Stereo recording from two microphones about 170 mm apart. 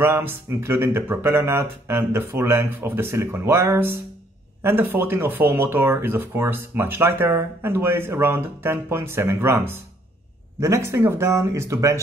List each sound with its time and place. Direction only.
0.0 s speech: 15° right (ahead or behind)